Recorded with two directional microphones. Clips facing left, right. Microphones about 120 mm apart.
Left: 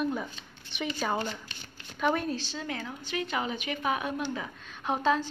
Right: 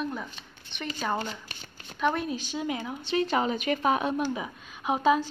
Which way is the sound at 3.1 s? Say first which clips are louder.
Right 6 dB; 35° right (ahead or behind).